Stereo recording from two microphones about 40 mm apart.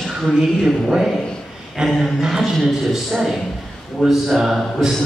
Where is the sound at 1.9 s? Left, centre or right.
Centre.